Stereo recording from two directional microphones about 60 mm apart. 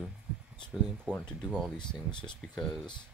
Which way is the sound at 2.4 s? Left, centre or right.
Centre.